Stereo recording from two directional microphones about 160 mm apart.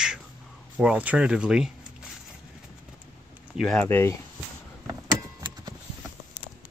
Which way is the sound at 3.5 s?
5° left (ahead or behind).